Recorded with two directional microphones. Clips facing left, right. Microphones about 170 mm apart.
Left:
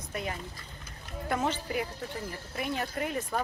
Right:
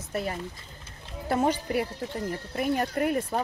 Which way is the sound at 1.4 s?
15° right (ahead or behind).